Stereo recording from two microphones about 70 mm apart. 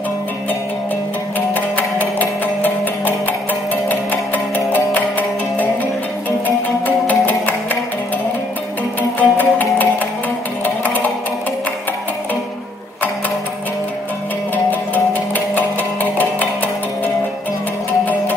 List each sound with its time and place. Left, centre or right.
1.5 s music: left
7.1 s music: left
9.2 s music: left
15.3 s music: left